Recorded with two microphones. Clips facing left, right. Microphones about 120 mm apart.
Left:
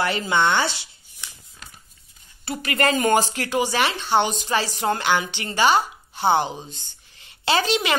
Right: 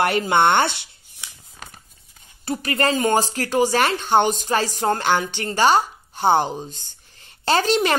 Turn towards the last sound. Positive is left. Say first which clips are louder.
# right 3 dB
turn(degrees=-45)  # may be behind; listen again after turning